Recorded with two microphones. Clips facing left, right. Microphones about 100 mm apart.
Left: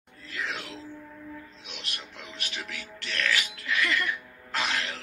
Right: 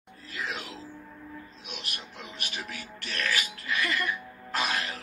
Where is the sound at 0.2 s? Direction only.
30° right (ahead or behind).